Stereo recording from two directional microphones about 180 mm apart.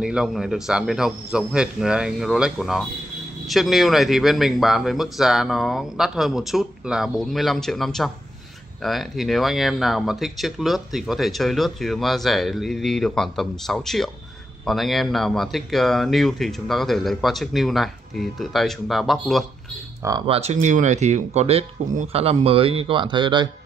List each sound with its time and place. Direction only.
0.0 s speech: centre (ahead or behind)
20.2 s speech: 35° right (ahead or behind)